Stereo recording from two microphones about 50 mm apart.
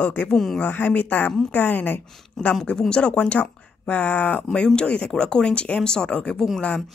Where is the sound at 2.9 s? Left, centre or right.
Centre.